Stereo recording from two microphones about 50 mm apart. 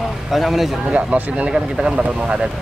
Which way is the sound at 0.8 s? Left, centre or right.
Right.